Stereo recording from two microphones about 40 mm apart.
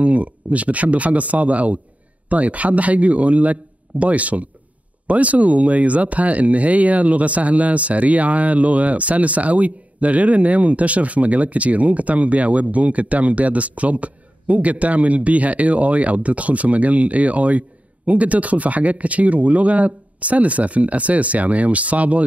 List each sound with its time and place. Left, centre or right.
0.0 s speech: right